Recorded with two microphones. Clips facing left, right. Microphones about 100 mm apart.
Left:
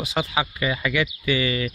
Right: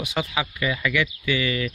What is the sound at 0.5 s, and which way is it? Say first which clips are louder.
Speech: even; 25° left (ahead or behind).